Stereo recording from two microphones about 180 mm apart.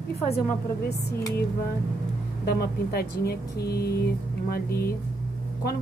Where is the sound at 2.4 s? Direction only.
65° left (ahead or behind).